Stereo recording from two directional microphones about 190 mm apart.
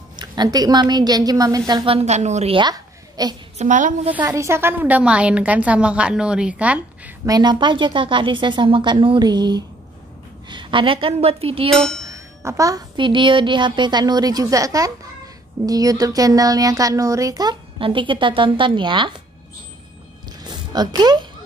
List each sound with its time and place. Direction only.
0.1 s a woman's voice: 20° right (ahead or behind)
2.0 s a woman's voice: 35° right (ahead or behind); by 3.3 s 20° right (ahead or behind)
3.5 s a woman's voice: 40° right (ahead or behind)
4.1 s a woman's voice: 10° right (ahead or behind)
7.2 s speech: 20° right (ahead or behind)
11.7 s speech: centre (ahead or behind)
12.0 s speech: 15° right (ahead or behind)
20.2 s a sound: 20° right (ahead or behind)